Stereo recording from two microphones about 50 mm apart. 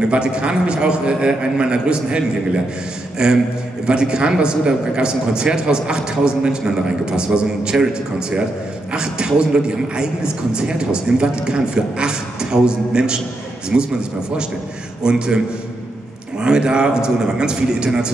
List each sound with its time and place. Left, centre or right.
0.1 s a man's voice: right
15.0 s a man's voice: centre